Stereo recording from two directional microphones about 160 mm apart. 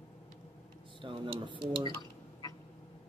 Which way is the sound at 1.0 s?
30° right (ahead or behind).